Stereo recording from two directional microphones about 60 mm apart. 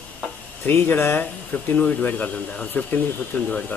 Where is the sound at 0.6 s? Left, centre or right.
Left.